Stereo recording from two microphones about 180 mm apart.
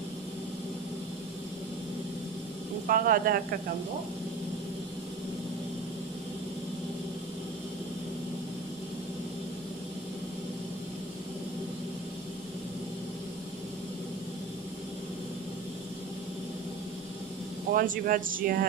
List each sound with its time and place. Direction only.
2.9 s speech: 55° right (ahead or behind)
17.7 s speech: 50° right (ahead or behind)